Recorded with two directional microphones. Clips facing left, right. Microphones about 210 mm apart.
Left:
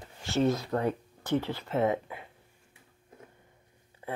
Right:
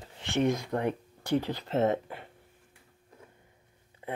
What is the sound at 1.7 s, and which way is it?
Speech, 40° right (ahead or behind).